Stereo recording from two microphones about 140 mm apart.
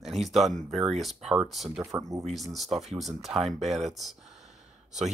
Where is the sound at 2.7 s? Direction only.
Centre (ahead or behind).